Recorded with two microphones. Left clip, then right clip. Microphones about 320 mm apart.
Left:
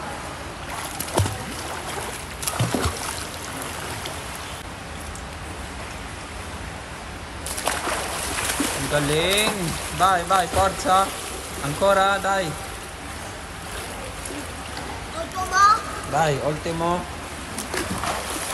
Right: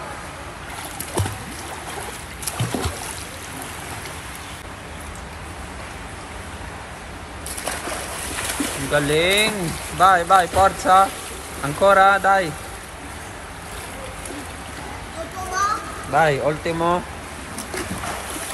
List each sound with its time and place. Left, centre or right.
2.4 s music: centre
7.6 s bird: centre
11.6 s speech: centre
15.3 s a sound: centre
17.7 s boat: centre